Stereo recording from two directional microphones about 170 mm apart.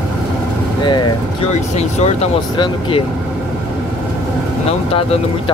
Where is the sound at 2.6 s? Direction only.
30° left (ahead or behind).